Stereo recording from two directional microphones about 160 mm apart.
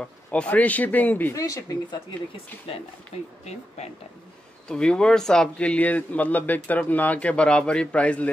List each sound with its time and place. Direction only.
0.0 s a man's voice: 5° left (ahead or behind); by 2.1 s 25° left (ahead or behind)
3.4 s speech: 40° left (ahead or behind)
4.6 s a man's voice: 5° left (ahead or behind)